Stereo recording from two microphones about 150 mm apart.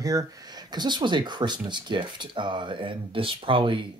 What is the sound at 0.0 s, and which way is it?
Speech, 25° right (ahead or behind).